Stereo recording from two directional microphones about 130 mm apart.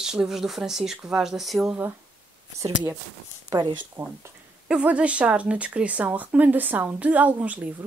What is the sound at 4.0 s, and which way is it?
Speech, 20° right (ahead or behind).